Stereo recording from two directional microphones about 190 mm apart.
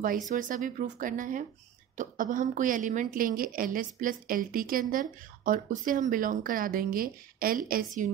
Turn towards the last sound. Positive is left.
turn(degrees=-50)  # may be behind; listen again after turning